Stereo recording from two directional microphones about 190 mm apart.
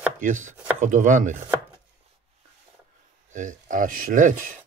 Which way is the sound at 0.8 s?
40° right (ahead or behind).